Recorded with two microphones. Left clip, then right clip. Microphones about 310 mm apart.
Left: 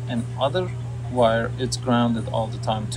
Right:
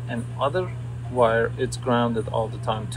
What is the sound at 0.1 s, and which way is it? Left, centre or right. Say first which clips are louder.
Speech: left 1 dB; centre.